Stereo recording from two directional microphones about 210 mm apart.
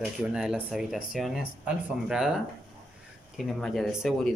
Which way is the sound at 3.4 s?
Centre (ahead or behind).